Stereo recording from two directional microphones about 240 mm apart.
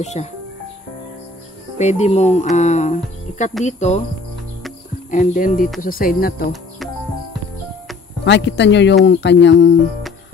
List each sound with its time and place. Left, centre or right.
0.0 s speech: left
1.8 s speech: left
5.1 s speech: left
8.3 s speech: left